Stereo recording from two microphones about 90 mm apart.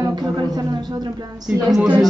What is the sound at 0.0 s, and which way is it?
Music, 45° right (ahead or behind).